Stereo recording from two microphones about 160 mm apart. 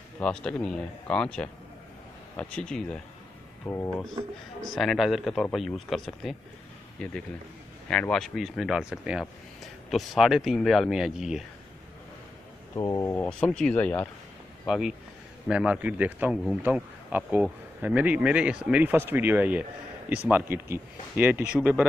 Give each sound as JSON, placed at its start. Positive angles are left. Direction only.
{"t": 0.2, "sound": "speech", "side_deg": 5}
{"t": 3.6, "sound": "speech", "side_deg": 15}
{"t": 4.7, "sound": "speech", "side_deg": 0}
{"t": 12.7, "sound": "speech", "side_deg": 20}
{"t": 14.7, "sound": "speech", "side_deg": -5}